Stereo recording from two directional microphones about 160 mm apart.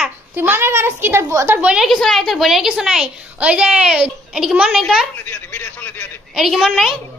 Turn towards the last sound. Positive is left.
turn(degrees=0)  # may be behind; listen again after turning